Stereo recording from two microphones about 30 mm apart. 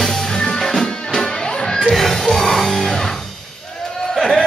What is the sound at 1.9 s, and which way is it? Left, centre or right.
Music, centre.